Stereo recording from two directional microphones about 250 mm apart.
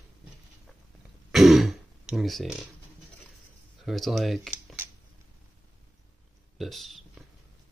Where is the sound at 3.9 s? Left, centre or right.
Centre.